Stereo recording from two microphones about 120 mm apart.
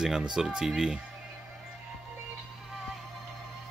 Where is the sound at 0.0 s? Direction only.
5° right (ahead or behind).